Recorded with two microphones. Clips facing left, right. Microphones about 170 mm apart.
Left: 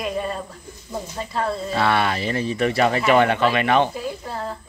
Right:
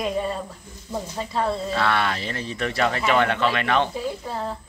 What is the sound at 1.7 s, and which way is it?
Speech, 10° left (ahead or behind).